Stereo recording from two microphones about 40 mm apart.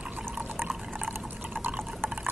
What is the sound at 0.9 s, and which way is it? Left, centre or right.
Pour, right.